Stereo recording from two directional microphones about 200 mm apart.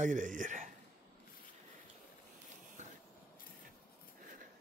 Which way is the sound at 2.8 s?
35° right (ahead or behind).